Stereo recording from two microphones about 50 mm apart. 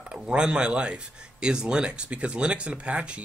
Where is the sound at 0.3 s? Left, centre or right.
Centre.